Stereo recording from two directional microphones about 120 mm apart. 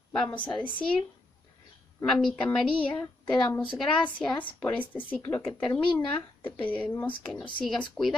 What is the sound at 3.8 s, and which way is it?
A woman's voice, 5° left (ahead or behind).